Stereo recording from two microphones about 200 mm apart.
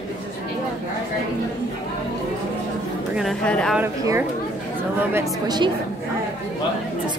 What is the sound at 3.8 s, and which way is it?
A woman's voice, 10° right (ahead or behind).